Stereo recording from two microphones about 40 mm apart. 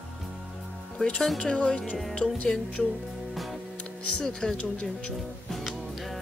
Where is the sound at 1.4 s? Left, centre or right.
Left.